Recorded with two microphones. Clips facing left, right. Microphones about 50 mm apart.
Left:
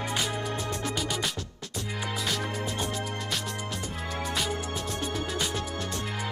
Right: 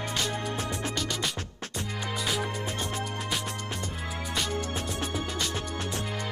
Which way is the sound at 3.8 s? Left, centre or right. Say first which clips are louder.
Left 1 dB; centre.